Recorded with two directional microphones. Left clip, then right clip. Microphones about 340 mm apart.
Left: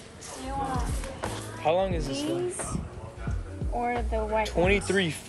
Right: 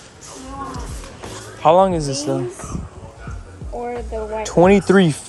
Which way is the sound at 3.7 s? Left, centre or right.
Left.